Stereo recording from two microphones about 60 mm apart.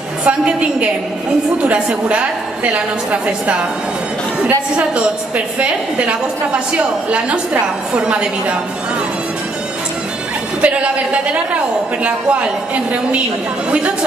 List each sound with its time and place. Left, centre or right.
0.2 s a woman's voice: right
4.7 s a woman's voice: right
10.6 s a woman's voice: right